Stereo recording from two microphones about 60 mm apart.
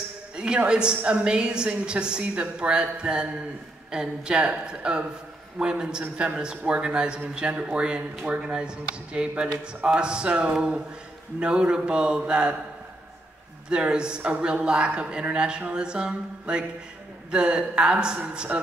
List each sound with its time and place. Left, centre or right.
0.4 s a man's voice: centre
13.7 s a man's voice: centre